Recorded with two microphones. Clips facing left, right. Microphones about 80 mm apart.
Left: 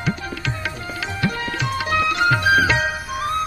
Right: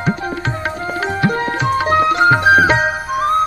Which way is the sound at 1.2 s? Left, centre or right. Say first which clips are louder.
Right 5 dB; right.